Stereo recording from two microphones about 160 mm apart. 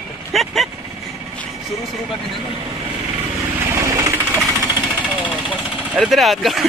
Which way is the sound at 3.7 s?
20° right (ahead or behind).